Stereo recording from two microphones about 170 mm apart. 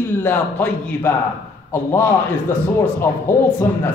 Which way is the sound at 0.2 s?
10° left (ahead or behind).